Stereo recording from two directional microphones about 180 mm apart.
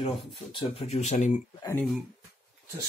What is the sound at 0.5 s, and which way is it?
Speech, 35° left (ahead or behind).